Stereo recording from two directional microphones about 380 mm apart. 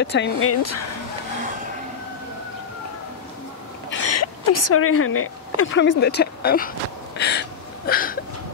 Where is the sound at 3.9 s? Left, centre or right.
Left.